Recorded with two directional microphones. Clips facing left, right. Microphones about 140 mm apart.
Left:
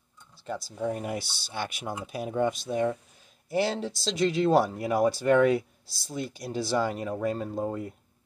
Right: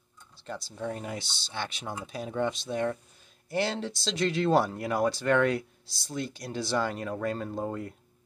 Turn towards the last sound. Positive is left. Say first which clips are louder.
# left 2 dB
turn(degrees=5)  # may be behind; listen again after turning